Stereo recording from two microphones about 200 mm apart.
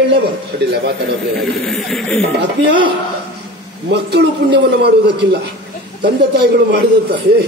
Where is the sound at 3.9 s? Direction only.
55° right (ahead or behind).